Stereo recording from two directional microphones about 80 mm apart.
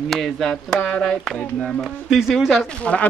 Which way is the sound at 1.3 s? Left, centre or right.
Centre.